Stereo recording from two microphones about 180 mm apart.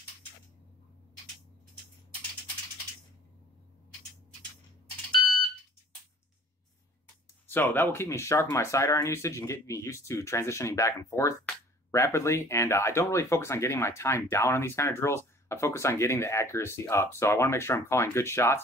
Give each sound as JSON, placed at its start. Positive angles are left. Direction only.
{"t": 7.4, "sound": "speech", "side_deg": 10}